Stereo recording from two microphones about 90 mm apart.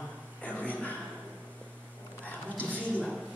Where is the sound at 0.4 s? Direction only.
15° left (ahead or behind).